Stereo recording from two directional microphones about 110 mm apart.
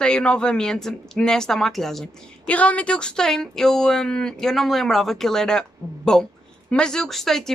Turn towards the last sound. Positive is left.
turn(degrees=5)  # may be behind; listen again after turning